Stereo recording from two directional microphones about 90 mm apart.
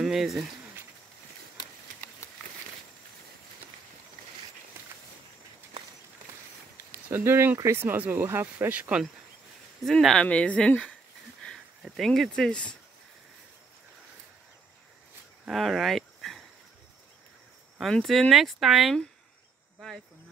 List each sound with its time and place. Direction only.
0.0 s speech: 5° right (ahead or behind)
6.9 s speech: 25° right (ahead or behind)
9.8 s speech: 5° left (ahead or behind)
12.0 s speech: 5° left (ahead or behind)
15.4 s speech: centre (ahead or behind)
17.7 s speech: centre (ahead or behind)